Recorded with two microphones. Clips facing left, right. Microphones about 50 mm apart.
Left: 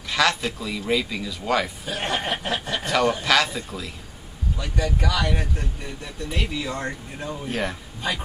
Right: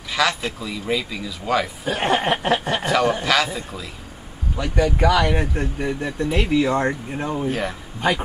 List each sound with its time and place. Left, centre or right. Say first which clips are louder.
0.1 s speech: even; centre
1.9 s speech: right 6 dB; right
2.8 s speech: right 2 dB; centre
4.6 s speech: right 7 dB; right
7.4 s speech: even; centre